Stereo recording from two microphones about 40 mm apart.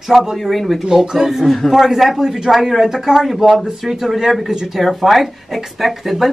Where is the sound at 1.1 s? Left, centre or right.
Centre.